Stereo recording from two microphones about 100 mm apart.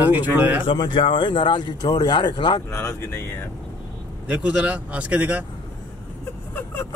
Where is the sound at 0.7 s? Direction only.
50° left (ahead or behind).